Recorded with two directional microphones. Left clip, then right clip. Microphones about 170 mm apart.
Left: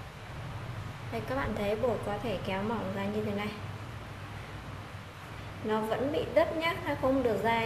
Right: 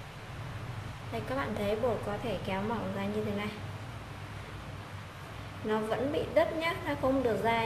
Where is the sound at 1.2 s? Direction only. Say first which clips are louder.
Left 1 dB; centre (ahead or behind).